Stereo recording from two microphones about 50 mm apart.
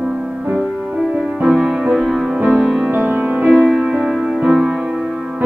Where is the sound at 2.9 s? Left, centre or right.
Right.